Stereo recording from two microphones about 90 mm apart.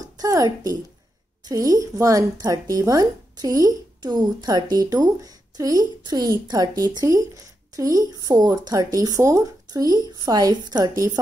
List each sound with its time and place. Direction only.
0.0 s speech: 40° right (ahead or behind)